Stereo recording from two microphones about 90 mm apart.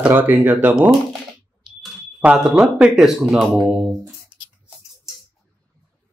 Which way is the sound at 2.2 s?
10° right (ahead or behind).